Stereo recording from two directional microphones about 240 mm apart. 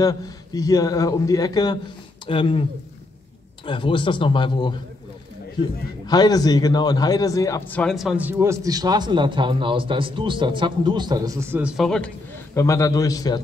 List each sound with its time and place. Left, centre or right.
0.0 s a man's voice: centre
3.6 s speech: centre
6.0 s speech: centre
12.5 s a man's voice: centre